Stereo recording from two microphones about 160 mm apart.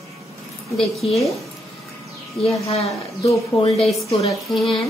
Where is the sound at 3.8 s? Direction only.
40° left (ahead or behind).